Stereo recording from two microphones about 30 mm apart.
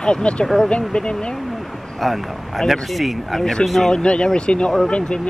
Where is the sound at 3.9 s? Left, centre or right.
Left.